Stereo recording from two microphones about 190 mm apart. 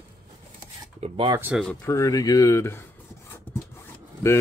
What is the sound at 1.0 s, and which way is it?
Speech, 25° right (ahead or behind).